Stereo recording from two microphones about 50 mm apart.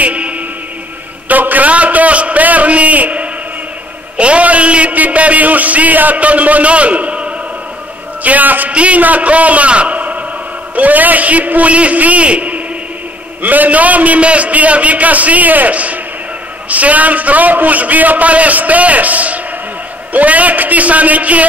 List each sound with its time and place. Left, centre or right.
0.0 s music: right
1.3 s a sound: right
4.2 s a man's voice: right
8.2 s a man's voice: right